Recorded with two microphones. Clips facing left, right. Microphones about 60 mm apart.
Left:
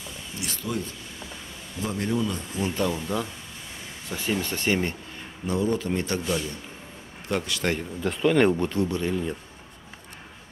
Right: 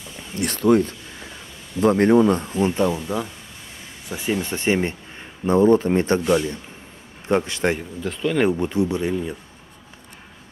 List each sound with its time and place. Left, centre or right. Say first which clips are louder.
0.4 s speech: right 14 dB; right
3.0 s speech: right 3 dB; centre
5.5 s speech: right 10 dB; right
8.0 s speech: left 1 dB; centre
8.5 s speech: right 4 dB; centre